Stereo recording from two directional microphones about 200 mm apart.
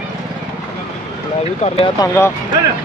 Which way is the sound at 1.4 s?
30° left (ahead or behind).